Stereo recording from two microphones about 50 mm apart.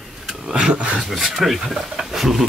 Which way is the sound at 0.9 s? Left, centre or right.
Centre.